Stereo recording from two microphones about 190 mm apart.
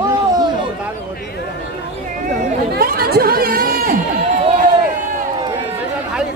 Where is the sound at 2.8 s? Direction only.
50° right (ahead or behind).